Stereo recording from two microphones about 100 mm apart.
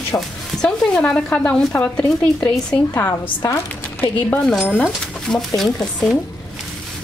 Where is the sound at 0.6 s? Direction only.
10° left (ahead or behind).